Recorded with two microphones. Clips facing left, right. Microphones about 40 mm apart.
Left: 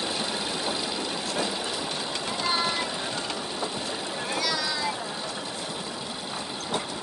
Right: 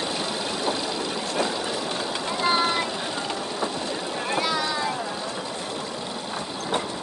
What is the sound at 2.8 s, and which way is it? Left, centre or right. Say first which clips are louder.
Vehicle: right 2 dB; centre.